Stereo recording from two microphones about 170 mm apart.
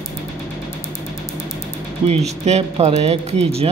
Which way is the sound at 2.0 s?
35° right (ahead or behind).